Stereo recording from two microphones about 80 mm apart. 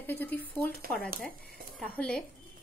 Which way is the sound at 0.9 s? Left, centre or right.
Centre.